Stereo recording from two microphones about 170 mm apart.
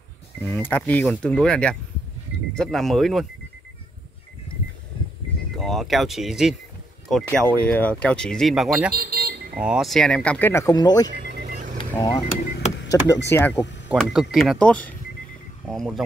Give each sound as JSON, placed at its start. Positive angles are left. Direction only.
{"t": 0.5, "sound": "speech", "side_deg": 10}
{"t": 5.6, "sound": "speech", "side_deg": 0}
{"t": 8.9, "sound": "vehicle", "side_deg": -65}
{"t": 9.6, "sound": "speech", "side_deg": -5}
{"t": 11.1, "sound": "vehicle", "side_deg": -70}
{"t": 12.0, "sound": "speech", "side_deg": 25}
{"t": 12.9, "sound": "speech", "side_deg": 10}
{"t": 13.8, "sound": "speech", "side_deg": 0}